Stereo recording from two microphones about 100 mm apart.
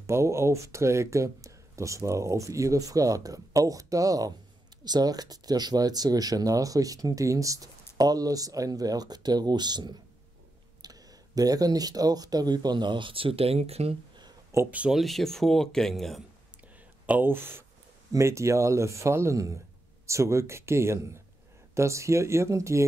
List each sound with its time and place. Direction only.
0.0 s speech: 30° right (ahead or behind); by 13.9 s 90° right
14.7 s speech: 15° right (ahead or behind)
15.0 s speech: centre (ahead or behind)
17.0 s speech: 15° right (ahead or behind)